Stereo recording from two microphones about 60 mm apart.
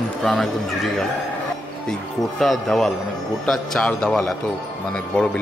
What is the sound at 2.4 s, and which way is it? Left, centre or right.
Speech, centre.